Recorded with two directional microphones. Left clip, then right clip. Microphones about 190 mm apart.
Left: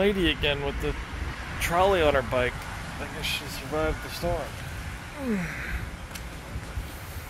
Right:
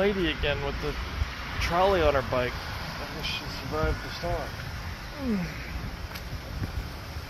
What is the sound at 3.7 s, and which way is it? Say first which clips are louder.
Speech: left 2 dB; 35° left (ahead or behind).